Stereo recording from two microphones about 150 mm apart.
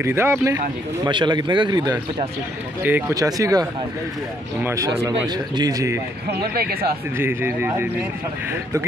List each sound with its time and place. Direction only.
0.0 s speech: 15° right (ahead or behind)
1.0 s speech: 30° right (ahead or behind)
2.8 s speech: 15° right (ahead or behind)
3.2 s speech: 25° right (ahead or behind)
4.6 s speech: 20° right (ahead or behind)
6.3 s speech: 90° right
7.2 s speech: 15° right (ahead or behind)